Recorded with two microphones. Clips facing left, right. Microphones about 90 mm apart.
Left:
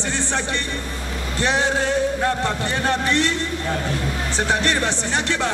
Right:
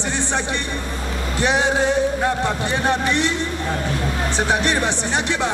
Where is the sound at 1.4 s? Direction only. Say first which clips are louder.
Right 2 dB; 15° right (ahead or behind).